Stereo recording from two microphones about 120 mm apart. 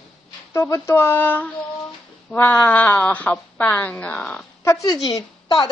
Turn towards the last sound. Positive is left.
turn(degrees=35)  # may be behind; listen again after turning